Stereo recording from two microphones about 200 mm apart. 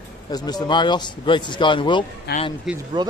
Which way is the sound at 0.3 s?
20° left (ahead or behind).